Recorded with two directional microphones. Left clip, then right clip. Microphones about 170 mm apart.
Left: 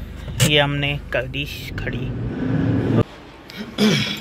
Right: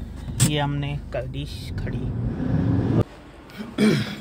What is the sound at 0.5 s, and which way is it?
Speech, 10° right (ahead or behind).